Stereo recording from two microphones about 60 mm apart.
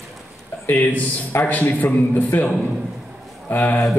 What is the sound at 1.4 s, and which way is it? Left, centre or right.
A man's voice, left.